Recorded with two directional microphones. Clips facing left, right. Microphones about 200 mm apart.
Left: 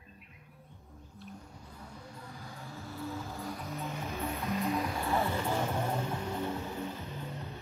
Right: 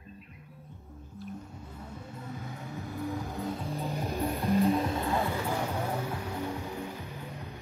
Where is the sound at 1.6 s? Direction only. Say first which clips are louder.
Right 5 dB; 25° right (ahead or behind).